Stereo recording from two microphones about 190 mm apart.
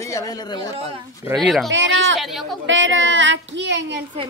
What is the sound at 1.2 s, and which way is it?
Speech, 10° right (ahead or behind).